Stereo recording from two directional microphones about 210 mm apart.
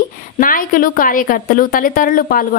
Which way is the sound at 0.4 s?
40° left (ahead or behind).